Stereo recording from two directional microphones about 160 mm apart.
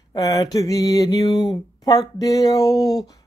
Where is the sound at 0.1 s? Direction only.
25° left (ahead or behind).